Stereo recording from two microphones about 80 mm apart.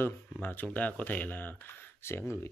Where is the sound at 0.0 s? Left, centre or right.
Left.